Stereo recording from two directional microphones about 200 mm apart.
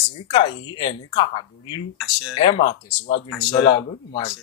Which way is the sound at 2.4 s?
25° left (ahead or behind).